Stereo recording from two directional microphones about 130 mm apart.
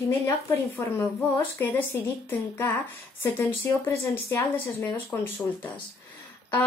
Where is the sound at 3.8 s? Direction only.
20° left (ahead or behind).